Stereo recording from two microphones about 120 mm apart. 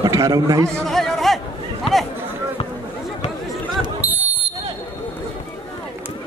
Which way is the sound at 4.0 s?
15° right (ahead or behind).